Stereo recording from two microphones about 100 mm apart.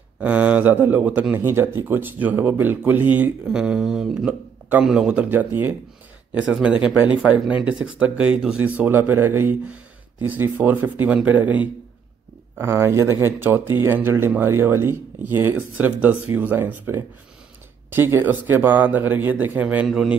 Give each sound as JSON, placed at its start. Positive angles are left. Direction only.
{"t": 0.2, "sound": "speech", "side_deg": -15}
{"t": 4.3, "sound": "a sound", "side_deg": -15}
{"t": 4.8, "sound": "speech", "side_deg": -10}
{"t": 19.9, "sound": "a man's voice", "side_deg": -5}